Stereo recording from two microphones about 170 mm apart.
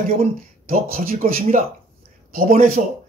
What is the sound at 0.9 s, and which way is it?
Speech, 55° right (ahead or behind).